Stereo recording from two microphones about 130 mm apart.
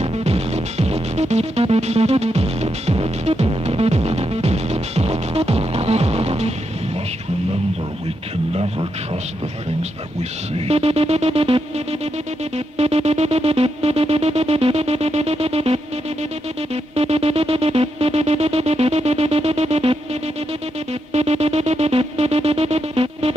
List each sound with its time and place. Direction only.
0.0 s music: 50° right (ahead or behind)
10.7 s music: 50° right (ahead or behind)
12.7 s music: 50° right (ahead or behind)
16.9 s music: 50° right (ahead or behind)
21.1 s music: 55° right (ahead or behind)